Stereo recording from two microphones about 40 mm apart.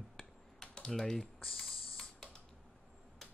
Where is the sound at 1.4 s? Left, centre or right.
Centre.